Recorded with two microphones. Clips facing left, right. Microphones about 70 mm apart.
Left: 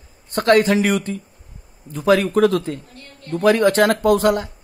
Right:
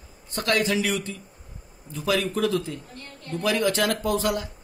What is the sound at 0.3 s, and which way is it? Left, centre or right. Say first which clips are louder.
A man's voice: left 9 dB; left.